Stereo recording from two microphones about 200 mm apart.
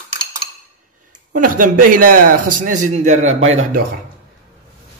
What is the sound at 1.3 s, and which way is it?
A man's voice, 45° right (ahead or behind).